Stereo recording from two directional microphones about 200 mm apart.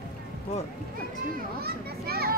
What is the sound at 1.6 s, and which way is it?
Speech, 50° right (ahead or behind).